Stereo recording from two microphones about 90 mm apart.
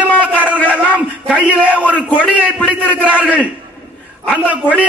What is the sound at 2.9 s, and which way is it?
Speech, 15° right (ahead or behind).